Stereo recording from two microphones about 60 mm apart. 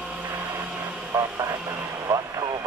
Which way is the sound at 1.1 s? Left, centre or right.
Right.